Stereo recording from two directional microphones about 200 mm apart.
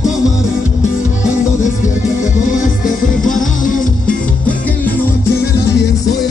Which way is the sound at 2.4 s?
40° left (ahead or behind).